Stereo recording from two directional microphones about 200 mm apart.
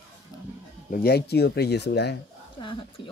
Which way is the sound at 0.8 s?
50° left (ahead or behind).